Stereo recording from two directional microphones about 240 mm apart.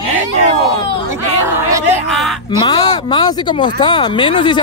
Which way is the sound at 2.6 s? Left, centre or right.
Centre.